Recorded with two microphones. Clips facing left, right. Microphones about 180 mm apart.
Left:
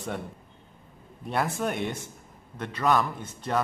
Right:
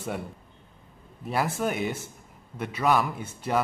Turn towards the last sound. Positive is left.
turn(degrees=-10)  # may be behind; listen again after turning